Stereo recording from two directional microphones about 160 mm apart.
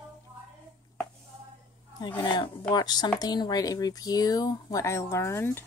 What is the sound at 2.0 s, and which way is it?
Speech, 25° left (ahead or behind).